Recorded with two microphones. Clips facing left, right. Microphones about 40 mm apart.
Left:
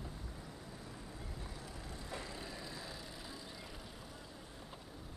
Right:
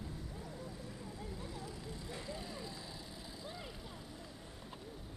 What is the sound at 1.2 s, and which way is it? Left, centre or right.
Vehicle, left.